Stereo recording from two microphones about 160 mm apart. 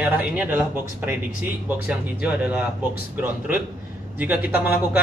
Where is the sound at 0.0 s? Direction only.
10° right (ahead or behind).